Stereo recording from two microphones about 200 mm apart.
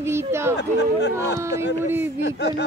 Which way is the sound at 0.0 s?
15° right (ahead or behind).